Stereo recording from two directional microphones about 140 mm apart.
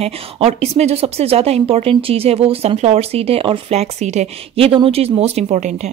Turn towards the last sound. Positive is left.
turn(degrees=-60)  # may be behind; listen again after turning